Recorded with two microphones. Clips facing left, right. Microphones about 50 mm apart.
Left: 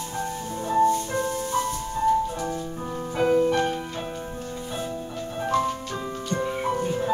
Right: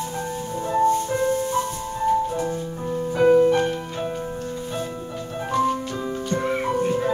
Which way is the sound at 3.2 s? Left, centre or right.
Centre.